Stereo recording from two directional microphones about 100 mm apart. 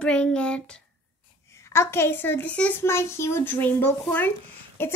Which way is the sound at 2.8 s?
25° left (ahead or behind).